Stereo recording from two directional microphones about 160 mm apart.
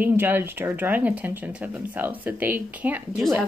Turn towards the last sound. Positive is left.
turn(degrees=-10)  # may be behind; listen again after turning